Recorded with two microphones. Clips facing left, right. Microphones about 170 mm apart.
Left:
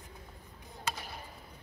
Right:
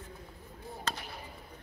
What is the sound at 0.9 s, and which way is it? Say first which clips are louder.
Basketball bounce: even; 10° left (ahead or behind).